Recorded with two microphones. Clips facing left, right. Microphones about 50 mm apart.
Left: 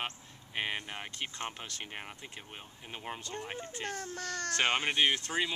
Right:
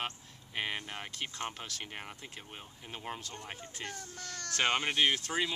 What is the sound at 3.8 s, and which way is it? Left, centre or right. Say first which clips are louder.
Speech: left 6 dB; left.